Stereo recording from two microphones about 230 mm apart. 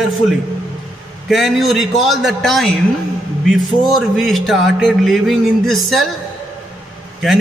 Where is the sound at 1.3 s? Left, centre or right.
Centre.